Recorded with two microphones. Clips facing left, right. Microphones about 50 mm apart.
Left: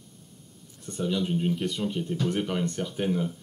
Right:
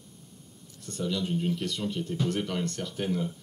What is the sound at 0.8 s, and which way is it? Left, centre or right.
Speech, centre.